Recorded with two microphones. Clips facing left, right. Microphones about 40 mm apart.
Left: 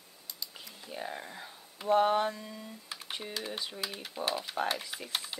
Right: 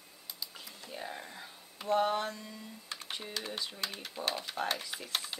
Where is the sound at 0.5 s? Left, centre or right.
Centre.